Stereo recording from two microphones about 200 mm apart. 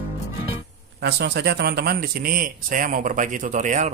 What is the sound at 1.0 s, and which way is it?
Speech, 55° right (ahead or behind).